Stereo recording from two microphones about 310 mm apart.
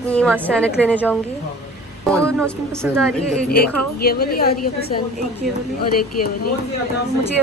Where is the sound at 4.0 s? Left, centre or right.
Left.